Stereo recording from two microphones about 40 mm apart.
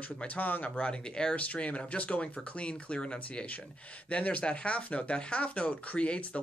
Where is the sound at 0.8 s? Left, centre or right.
Left.